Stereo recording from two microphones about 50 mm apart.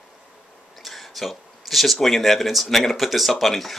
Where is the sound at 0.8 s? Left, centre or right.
Centre.